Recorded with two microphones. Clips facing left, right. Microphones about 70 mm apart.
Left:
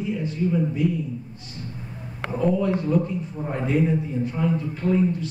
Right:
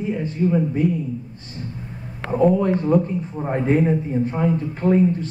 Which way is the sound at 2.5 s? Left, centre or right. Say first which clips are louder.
Right 4 dB; right.